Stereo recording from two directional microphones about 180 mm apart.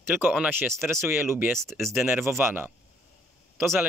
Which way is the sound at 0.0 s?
10° right (ahead or behind).